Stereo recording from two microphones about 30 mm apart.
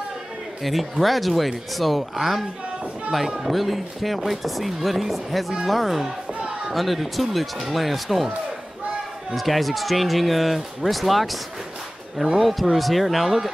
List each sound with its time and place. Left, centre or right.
0.6 s speech: centre
3.3 s speech: centre
3.5 s speech: centre
6.4 s a sound: right
6.7 s speech: centre
9.3 s speech: centre
12.4 s speech: centre